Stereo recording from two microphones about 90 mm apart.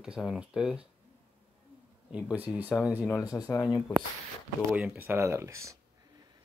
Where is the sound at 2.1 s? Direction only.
15° right (ahead or behind).